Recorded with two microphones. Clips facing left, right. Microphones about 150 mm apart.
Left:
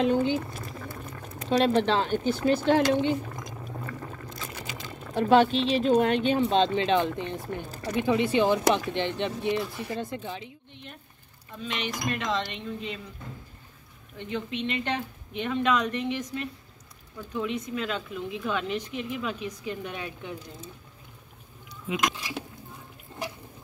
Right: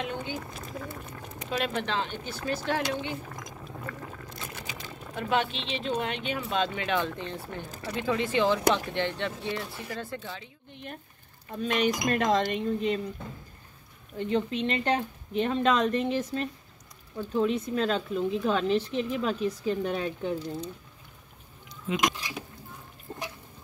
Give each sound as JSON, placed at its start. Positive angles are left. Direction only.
{"t": 0.0, "sound": "speech", "side_deg": 30}
{"t": 0.5, "sound": "a sound", "side_deg": 0}
{"t": 1.5, "sound": "speech", "side_deg": 30}
{"t": 2.3, "sound": "speech", "side_deg": 25}
{"t": 3.3, "sound": "a sound", "side_deg": 5}
{"t": 5.1, "sound": "speech", "side_deg": 35}
{"t": 6.5, "sound": "speech", "side_deg": 25}
{"t": 11.5, "sound": "speech", "side_deg": -45}
{"t": 14.1, "sound": "speech", "side_deg": -35}
{"t": 22.1, "sound": "dishes", "side_deg": 0}
{"t": 23.1, "sound": "a sound", "side_deg": -50}